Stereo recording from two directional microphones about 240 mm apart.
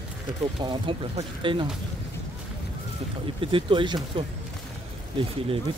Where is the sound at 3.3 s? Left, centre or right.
Right.